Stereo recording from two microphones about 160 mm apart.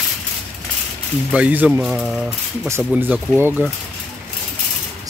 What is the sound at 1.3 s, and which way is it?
Speech, 10° right (ahead or behind).